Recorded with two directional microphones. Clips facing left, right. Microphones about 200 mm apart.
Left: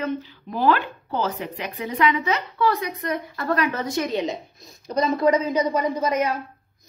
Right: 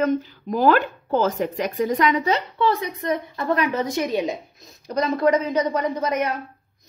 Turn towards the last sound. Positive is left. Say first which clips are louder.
# left 1 dB
turn(degrees=5)  # may be behind; listen again after turning